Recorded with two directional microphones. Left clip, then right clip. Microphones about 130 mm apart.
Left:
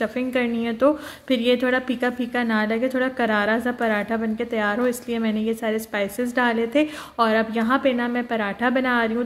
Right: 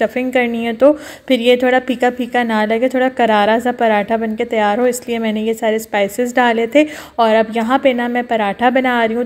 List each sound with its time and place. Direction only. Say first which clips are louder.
0.0 s a woman's voice: right 8 dB; 30° right (ahead or behind)